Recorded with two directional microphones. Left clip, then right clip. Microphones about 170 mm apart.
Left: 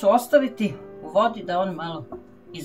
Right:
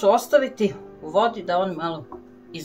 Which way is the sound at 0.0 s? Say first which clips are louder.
Even; 30° right (ahead or behind).